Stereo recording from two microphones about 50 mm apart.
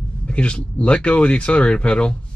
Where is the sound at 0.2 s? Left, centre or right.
Left.